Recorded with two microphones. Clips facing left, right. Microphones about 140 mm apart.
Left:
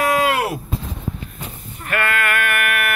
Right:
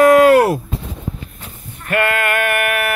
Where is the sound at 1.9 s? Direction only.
40° right (ahead or behind).